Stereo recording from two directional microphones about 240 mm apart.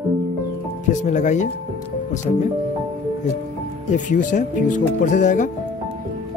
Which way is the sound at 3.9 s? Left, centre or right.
Left.